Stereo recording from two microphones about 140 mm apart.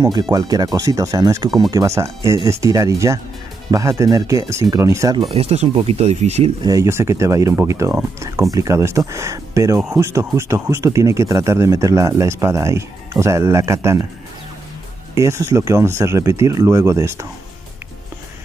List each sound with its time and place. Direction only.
0.0 s speech: 30° right (ahead or behind)
5.3 s speech: 45° right (ahead or behind)
6.6 s speech: 25° right (ahead or behind)
15.1 s speech: 20° right (ahead or behind)